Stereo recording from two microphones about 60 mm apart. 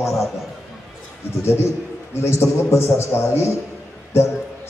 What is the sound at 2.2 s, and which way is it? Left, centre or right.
Speech, left.